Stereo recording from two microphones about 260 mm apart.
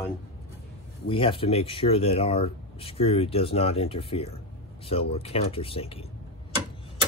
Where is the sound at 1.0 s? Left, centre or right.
Centre.